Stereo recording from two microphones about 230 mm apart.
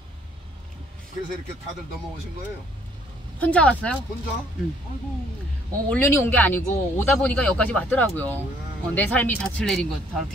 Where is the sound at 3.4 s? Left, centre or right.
Centre.